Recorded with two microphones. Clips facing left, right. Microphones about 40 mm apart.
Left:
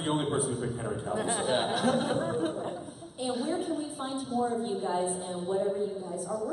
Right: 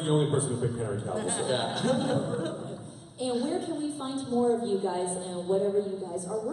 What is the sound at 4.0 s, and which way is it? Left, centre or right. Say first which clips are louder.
Speech: right 1 dB; left.